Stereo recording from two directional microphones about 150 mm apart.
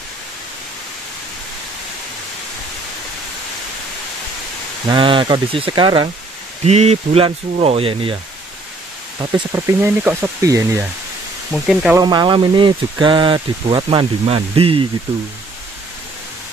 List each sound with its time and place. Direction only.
4.8 s speech: 35° right (ahead or behind)
6.6 s speech: 45° right (ahead or behind)
9.2 s speech: 15° right (ahead or behind)
11.5 s speech: centre (ahead or behind)
12.0 s speech: 30° right (ahead or behind)